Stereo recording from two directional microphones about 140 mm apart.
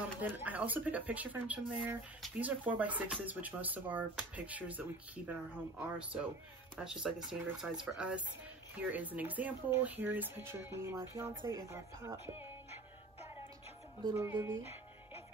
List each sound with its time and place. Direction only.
0.2 s speech: 15° right (ahead or behind)
14.1 s speech: 20° right (ahead or behind)